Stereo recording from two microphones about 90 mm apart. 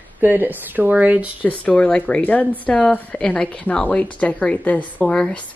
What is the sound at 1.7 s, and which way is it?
A woman's voice, 15° left (ahead or behind).